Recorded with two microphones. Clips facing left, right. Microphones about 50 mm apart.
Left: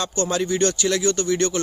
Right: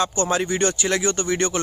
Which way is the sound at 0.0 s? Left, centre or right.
Centre.